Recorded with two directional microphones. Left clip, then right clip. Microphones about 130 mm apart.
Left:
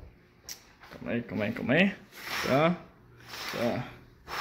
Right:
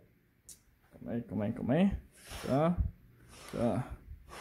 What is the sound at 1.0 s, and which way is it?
Speech, 15° right (ahead or behind).